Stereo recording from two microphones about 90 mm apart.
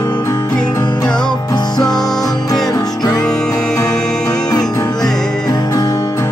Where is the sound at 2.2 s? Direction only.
45° left (ahead or behind).